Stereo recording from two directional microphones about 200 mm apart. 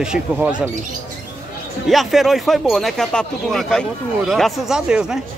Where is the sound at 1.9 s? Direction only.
Centre (ahead or behind).